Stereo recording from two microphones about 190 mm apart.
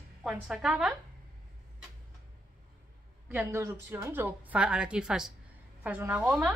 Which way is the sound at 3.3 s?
10° right (ahead or behind).